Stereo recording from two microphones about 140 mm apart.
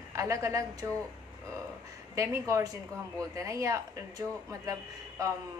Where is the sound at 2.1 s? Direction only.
20° right (ahead or behind).